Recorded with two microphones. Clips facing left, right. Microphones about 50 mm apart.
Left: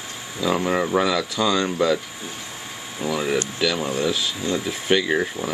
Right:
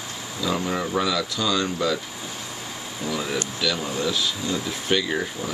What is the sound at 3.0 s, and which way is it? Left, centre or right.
Speech, left.